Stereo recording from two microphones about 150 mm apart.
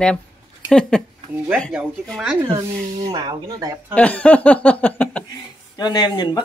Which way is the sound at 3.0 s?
30° right (ahead or behind).